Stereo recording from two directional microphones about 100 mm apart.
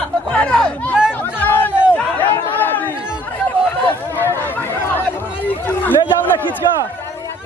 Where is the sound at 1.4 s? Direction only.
20° left (ahead or behind).